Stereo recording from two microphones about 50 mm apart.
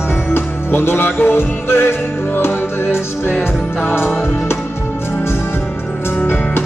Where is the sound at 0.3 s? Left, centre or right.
Left.